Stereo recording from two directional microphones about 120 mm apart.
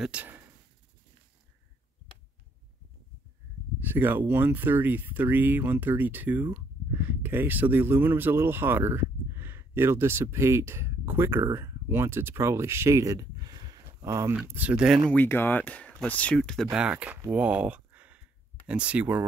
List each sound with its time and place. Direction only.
0.0 s speech: 10° right (ahead or behind)
3.8 s speech: 15° right (ahead or behind)
14.3 s speech: 15° right (ahead or behind)
15.0 s speech: 15° left (ahead or behind)
16.7 s speech: 10° right (ahead or behind)
17.3 s a sound: 10° right (ahead or behind)
18.7 s speech: 10° right (ahead or behind)